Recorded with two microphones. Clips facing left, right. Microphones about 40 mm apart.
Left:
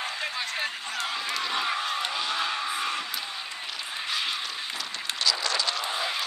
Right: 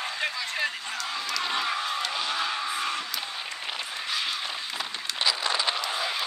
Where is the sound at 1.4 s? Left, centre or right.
Centre.